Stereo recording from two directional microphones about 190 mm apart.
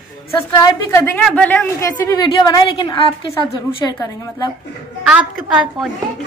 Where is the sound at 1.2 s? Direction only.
5° left (ahead or behind).